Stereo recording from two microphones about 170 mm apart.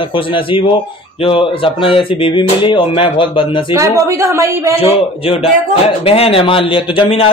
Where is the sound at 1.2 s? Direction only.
30° left (ahead or behind).